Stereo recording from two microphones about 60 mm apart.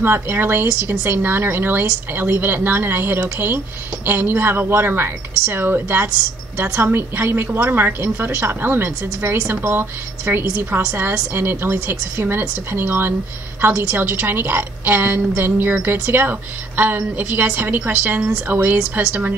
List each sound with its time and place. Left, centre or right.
0.0 s a woman's voice: right